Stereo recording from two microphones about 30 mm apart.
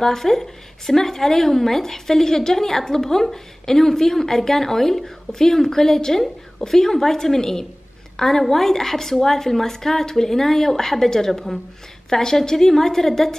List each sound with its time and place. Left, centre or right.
0.0 s speech: centre
12.1 s speech: centre